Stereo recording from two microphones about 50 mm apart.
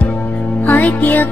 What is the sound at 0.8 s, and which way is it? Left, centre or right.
Music, left.